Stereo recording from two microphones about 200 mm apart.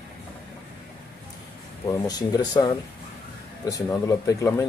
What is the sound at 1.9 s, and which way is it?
Speech, 20° left (ahead or behind).